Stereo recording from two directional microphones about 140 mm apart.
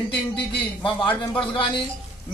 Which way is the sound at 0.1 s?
35° left (ahead or behind).